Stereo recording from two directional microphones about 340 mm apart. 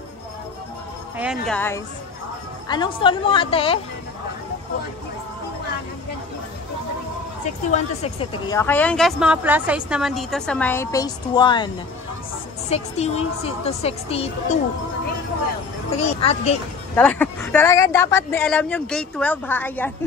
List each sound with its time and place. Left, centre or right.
1.1 s speech: centre
7.7 s a woman's voice: centre
16.0 s speech: centre
16.9 s speech: centre